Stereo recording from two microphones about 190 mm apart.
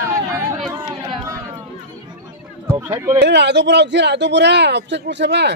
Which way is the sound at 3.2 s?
65° right (ahead or behind).